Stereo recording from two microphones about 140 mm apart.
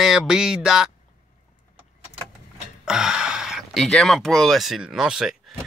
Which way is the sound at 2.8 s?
5° right (ahead or behind).